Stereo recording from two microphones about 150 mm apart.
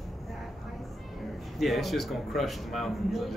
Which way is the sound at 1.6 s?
Centre (ahead or behind).